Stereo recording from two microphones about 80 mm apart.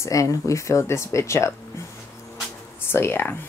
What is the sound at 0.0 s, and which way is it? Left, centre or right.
Speech, left.